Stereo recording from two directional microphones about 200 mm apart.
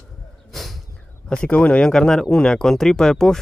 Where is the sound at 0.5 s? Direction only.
Centre (ahead or behind).